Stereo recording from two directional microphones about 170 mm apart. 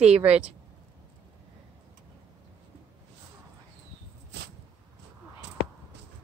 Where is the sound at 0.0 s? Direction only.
40° right (ahead or behind).